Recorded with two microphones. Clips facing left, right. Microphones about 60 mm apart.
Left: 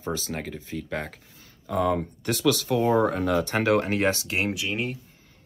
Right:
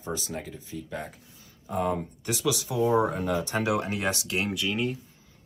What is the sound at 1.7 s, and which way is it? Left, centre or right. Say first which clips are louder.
Speech: left 4 dB; left.